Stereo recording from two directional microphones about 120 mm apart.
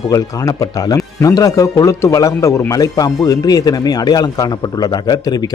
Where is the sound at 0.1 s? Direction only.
30° left (ahead or behind).